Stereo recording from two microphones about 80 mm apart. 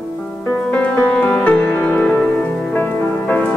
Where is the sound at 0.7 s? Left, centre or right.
Centre.